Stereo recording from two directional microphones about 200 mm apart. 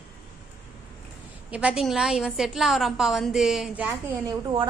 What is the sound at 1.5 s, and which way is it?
A woman's voice, 5° right (ahead or behind).